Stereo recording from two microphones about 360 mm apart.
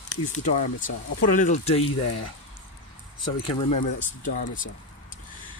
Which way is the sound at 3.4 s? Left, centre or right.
Centre.